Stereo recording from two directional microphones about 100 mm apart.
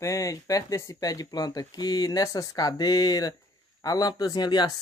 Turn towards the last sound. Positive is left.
turn(degrees=45)  # may be behind; listen again after turning